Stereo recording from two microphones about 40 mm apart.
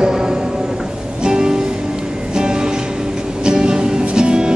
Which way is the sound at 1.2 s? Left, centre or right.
Centre.